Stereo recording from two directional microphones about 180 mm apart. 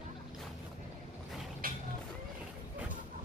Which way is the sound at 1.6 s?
50° right (ahead or behind).